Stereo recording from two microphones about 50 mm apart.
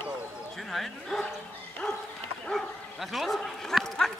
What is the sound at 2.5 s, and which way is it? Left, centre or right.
Speech, centre.